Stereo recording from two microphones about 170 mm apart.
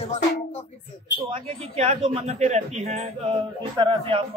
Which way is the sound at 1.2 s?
35° right (ahead or behind).